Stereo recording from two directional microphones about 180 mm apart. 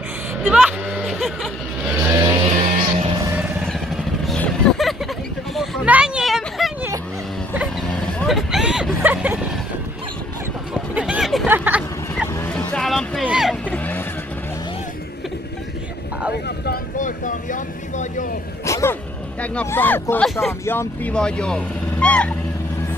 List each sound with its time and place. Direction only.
0.4 s music: 5° right (ahead or behind)
2.0 s vehicle: 15° right (ahead or behind)
2.5 s music: 35° right (ahead or behind)
3.6 s vehicle: centre (ahead or behind)
7.9 s vehicle: centre (ahead or behind)
10.7 s a sound: 5° right (ahead or behind)
11.4 s vehicle: 10° right (ahead or behind)
12.4 s a sound: 5° left (ahead or behind)
13.7 s vehicle: 10° left (ahead or behind)
16.4 s boat: 65° left (ahead or behind)
16.9 s vehicle: 45° left (ahead or behind)
18.7 s a sound: 15° left (ahead or behind)
20.6 s speech: 10° left (ahead or behind)